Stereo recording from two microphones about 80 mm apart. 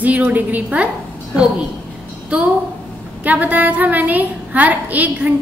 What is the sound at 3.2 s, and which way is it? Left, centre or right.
A woman's voice, centre.